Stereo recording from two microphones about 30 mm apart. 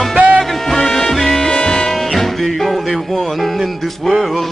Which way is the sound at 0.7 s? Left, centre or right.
Centre.